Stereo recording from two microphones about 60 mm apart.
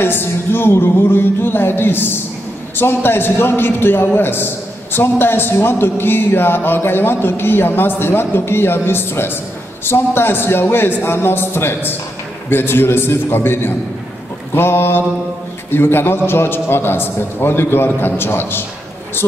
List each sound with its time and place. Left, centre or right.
0.0 s a man's voice: left